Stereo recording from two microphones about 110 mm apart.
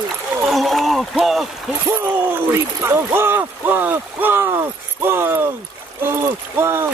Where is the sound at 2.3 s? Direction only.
20° right (ahead or behind).